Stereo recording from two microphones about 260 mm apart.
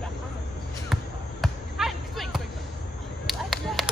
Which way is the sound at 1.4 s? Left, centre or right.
Centre.